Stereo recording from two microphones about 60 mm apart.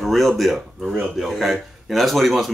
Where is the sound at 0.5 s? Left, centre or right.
Centre.